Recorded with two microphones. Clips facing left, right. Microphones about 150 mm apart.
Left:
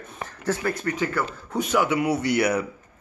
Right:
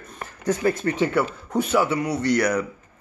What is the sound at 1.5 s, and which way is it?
Speech, 5° right (ahead or behind).